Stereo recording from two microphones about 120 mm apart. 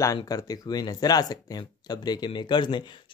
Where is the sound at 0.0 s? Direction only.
30° left (ahead or behind).